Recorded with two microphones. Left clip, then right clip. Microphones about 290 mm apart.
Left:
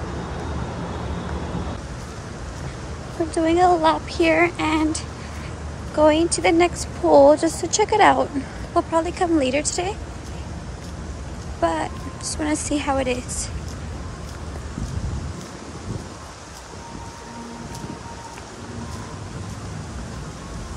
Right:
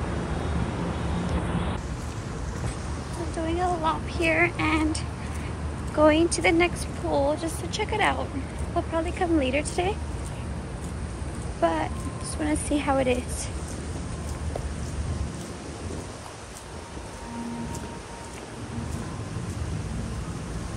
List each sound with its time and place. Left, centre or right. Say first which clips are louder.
3.4 s speech: left 10 dB; centre
7.1 s speech: left 12 dB; left; by 9.9 s centre
11.6 s a woman's voice: left 3 dB; centre